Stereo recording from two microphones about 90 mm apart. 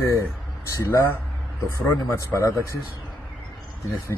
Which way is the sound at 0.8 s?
25° left (ahead or behind).